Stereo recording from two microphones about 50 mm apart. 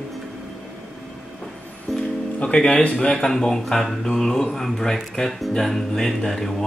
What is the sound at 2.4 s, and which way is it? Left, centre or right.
Speech, left.